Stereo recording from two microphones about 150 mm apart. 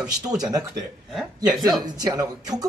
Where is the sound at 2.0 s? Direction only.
25° right (ahead or behind).